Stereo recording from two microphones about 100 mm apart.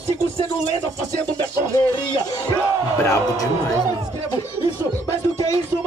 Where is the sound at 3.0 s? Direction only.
35° left (ahead or behind).